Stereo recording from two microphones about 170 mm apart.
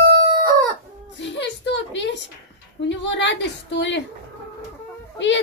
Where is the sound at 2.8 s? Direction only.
90° left.